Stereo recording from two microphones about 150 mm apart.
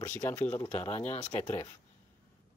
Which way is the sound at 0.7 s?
40° left (ahead or behind).